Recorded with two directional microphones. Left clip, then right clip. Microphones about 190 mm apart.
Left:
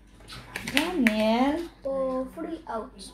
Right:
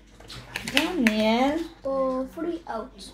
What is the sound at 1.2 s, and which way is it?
Speech, 25° right (ahead or behind).